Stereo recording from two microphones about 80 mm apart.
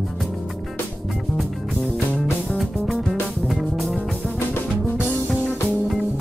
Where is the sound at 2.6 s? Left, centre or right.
Centre.